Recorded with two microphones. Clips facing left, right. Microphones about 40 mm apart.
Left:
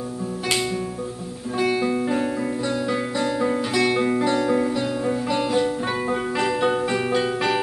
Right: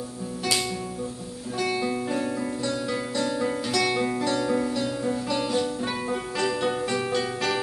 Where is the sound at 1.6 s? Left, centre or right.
Centre.